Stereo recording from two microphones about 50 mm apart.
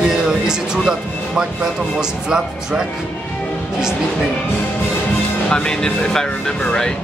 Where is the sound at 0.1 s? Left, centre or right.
Centre.